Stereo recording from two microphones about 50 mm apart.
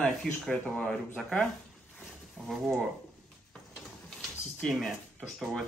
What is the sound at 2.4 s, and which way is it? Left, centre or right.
Speech, centre.